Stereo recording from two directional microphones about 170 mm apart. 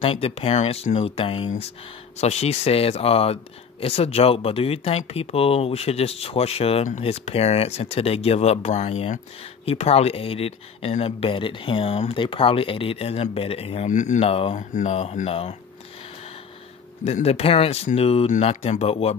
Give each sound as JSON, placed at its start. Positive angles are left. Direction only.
{"t": 0.0, "sound": "speech", "side_deg": 35}
{"t": 14.6, "sound": "speech", "side_deg": 45}
{"t": 17.0, "sound": "speech", "side_deg": 40}